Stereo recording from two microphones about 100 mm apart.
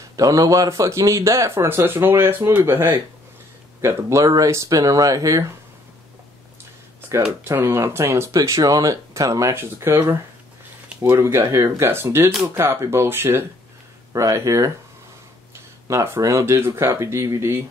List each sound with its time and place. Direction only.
0.1 s speech: 35° right (ahead or behind)
7.0 s a sound: 30° right (ahead or behind)
7.4 s speech: 25° right (ahead or behind)
14.1 s speech: 35° right (ahead or behind)
15.9 s speech: 30° right (ahead or behind)